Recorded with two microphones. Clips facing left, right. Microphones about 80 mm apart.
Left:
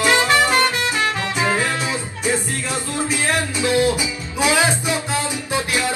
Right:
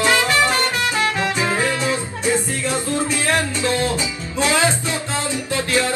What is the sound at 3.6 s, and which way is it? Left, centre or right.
Music, centre.